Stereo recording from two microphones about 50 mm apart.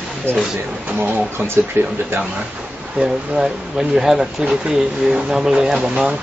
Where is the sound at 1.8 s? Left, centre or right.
Right.